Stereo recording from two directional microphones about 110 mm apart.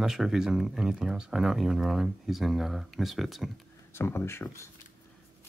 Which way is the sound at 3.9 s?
20° left (ahead or behind).